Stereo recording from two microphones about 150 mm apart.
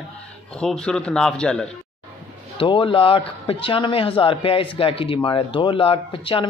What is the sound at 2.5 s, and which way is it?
A man's voice, 35° left (ahead or behind).